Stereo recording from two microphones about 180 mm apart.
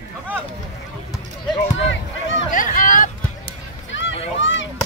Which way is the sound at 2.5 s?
50° left (ahead or behind).